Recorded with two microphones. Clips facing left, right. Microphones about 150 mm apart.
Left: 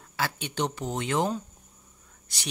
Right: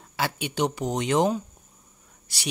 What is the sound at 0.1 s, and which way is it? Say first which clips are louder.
Speech: right 3 dB; 15° right (ahead or behind).